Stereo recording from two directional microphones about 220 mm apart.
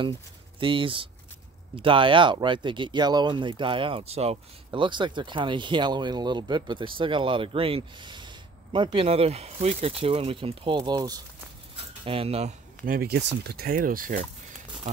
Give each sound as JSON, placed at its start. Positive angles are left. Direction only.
{"t": 0.6, "sound": "speech", "side_deg": -25}